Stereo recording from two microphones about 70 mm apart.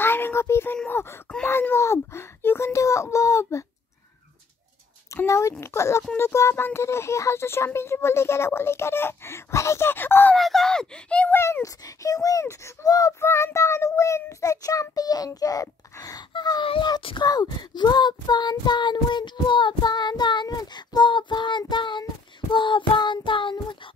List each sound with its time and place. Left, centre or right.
0.0 s a sound: left
0.8 s speech: left
5.1 s a child's voice: left
10.3 s speech: centre
11.3 s speech: left
11.6 s speech: left
12.8 s speech: left
13.2 s child singing: left